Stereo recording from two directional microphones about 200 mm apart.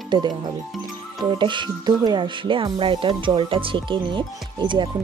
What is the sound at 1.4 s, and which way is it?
Speech, 25° right (ahead or behind).